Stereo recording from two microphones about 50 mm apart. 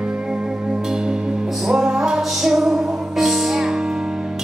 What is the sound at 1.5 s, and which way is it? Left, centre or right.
Music, centre.